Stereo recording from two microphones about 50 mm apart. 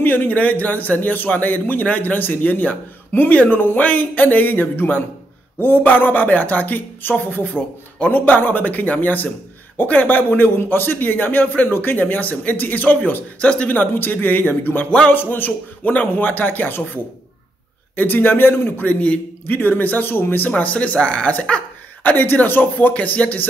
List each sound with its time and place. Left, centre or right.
0.0 s speech: left
13.4 s speech: left
13.7 s speech: left
18.9 s speech: left
20.4 s speech: left
22.0 s speech: left
22.9 s speech: left